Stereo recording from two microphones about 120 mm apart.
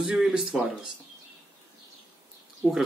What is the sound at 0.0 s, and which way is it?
Speech, 5° right (ahead or behind).